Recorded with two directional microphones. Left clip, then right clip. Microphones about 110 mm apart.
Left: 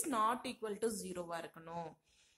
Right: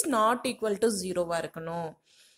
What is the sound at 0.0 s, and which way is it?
A woman's voice, 35° right (ahead or behind).